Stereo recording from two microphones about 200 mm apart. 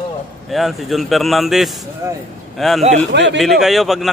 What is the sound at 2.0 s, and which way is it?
Speech, 20° right (ahead or behind).